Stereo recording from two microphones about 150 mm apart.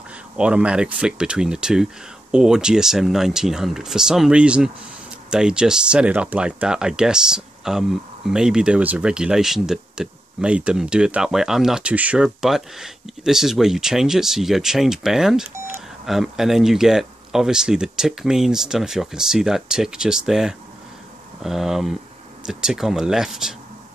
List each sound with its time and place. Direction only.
0.4 s speech: 5° right (ahead or behind)
15.5 s beep: 15° right (ahead or behind)
16.1 s speech: centre (ahead or behind)